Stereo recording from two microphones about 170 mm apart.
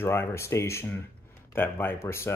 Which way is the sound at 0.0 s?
15° left (ahead or behind).